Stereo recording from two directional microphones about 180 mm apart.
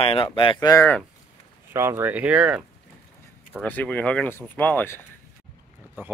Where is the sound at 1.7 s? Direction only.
15° right (ahead or behind).